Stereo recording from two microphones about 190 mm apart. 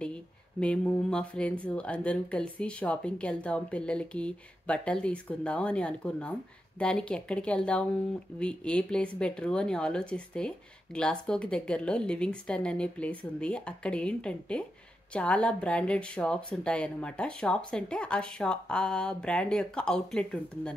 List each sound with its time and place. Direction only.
0.0 s speech: 5° left (ahead or behind)